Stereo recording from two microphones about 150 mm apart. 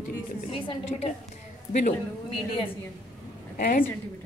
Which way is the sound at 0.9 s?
50° left (ahead or behind).